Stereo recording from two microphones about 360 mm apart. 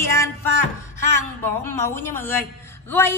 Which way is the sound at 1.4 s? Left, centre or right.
Centre.